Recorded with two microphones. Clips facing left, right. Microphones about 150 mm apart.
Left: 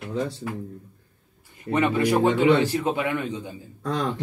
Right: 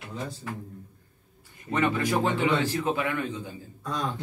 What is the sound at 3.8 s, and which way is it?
Speech, 75° left (ahead or behind).